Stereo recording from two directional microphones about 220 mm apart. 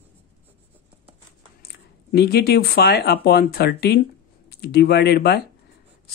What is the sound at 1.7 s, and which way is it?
Speech, 45° left (ahead or behind).